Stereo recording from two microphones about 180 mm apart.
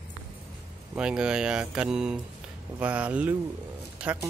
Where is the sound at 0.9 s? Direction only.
5° right (ahead or behind).